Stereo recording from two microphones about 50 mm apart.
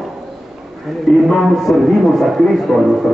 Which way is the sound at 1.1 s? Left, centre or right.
Centre.